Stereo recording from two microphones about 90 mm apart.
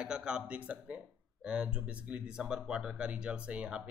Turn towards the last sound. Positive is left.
turn(degrees=-10)  # may be behind; listen again after turning